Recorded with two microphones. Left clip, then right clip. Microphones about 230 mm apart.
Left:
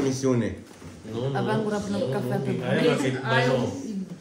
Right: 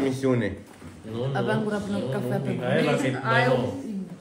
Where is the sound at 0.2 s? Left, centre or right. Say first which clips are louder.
Even; centre.